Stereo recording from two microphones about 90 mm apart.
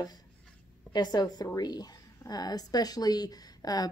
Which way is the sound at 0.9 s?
50° left (ahead or behind).